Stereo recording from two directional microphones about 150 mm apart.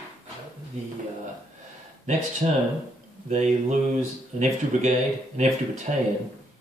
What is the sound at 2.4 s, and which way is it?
Speech, 40° right (ahead or behind).